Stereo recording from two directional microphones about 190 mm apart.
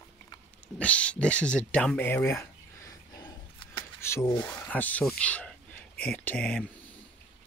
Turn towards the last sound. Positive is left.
turn(degrees=5)  # may be behind; listen again after turning